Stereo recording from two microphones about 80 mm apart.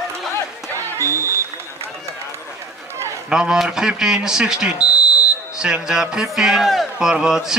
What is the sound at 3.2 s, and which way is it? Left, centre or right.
Speech, centre.